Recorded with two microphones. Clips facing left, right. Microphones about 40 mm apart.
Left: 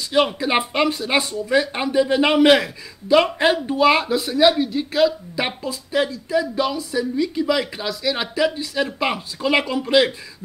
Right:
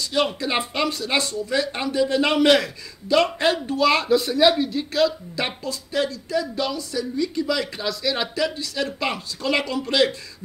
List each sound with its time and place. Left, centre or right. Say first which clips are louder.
0.4 s a woman's voice: left 4 dB; centre